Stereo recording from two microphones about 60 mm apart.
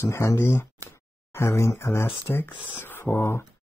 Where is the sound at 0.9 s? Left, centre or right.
Left.